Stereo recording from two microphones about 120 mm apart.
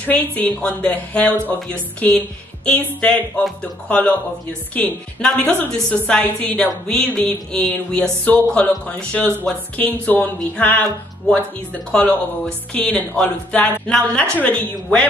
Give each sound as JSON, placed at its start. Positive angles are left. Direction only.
{"t": 0.0, "sound": "music", "side_deg": 15}
{"t": 4.7, "sound": "music", "side_deg": 15}